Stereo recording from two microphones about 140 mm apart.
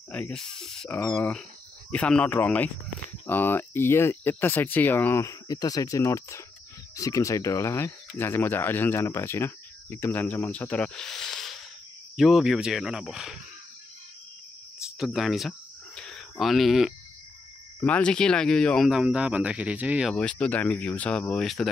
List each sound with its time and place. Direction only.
0.1 s speech: 5° left (ahead or behind)
0.8 s speech: 15° left (ahead or behind); by 13.4 s 5° right (ahead or behind)
15.0 s cricket: centre (ahead or behind)
17.8 s speech: 10° left (ahead or behind)
20.2 s speech: 10° left (ahead or behind)